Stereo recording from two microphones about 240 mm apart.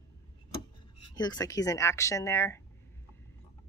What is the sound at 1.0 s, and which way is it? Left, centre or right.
A woman's voice, centre.